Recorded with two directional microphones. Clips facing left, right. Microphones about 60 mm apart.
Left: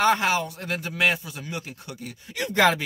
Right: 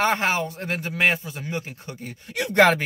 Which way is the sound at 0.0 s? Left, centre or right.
Right.